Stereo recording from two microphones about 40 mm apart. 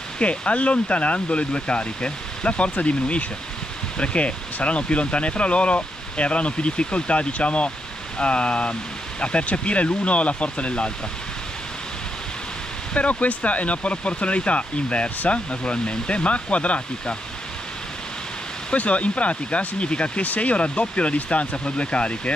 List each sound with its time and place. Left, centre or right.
0.2 s speech: left
12.9 s speech: left
18.7 s speech: left